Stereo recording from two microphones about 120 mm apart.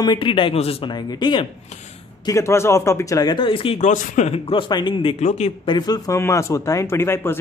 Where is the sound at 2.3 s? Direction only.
25° left (ahead or behind); by 3.7 s 45° left (ahead or behind).